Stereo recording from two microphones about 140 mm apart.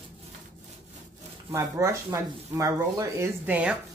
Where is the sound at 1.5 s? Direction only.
20° right (ahead or behind).